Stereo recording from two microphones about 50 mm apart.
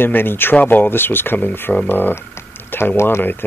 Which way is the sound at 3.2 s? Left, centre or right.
Left.